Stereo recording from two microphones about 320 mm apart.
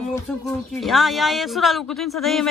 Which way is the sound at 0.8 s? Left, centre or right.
Centre.